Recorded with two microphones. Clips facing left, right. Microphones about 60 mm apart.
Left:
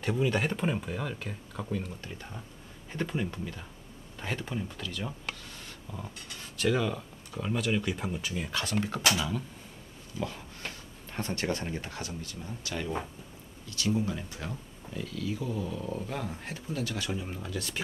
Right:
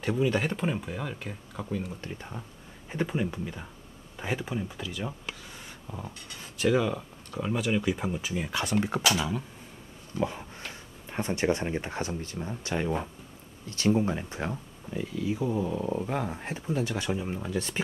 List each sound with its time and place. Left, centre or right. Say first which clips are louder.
0.0 s speech: right 2 dB; centre
2.1 s speech: right 3 dB; centre; by 14.6 s right
14.9 s speech: right 4 dB; centre